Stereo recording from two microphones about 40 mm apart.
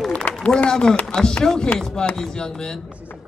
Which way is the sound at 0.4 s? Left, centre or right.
Left.